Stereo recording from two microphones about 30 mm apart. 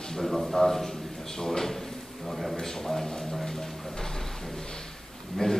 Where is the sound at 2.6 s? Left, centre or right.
Centre.